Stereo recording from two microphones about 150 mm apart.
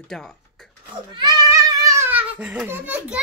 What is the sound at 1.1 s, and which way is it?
A child's voice, 30° right (ahead or behind).